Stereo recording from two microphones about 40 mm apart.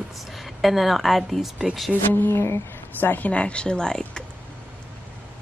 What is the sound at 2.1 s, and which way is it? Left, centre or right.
Speech, left.